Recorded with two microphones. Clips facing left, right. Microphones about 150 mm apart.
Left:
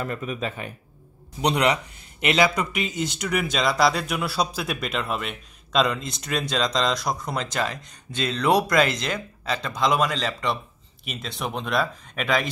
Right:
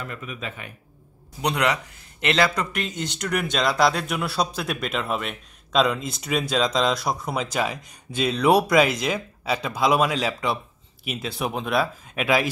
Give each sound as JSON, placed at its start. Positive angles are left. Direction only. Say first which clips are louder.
{"t": 0.0, "sound": "speech", "louder": "left 5 dB", "side_deg": 35}
{"t": 1.4, "sound": "a man's voice", "louder": "left 2 dB", "side_deg": 20}